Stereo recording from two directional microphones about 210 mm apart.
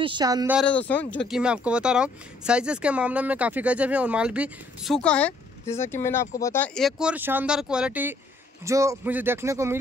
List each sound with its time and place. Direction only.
0.0 s a man's voice: 20° right (ahead or behind)
0.6 s a man's voice: 5° left (ahead or behind); by 9.8 s 15° right (ahead or behind)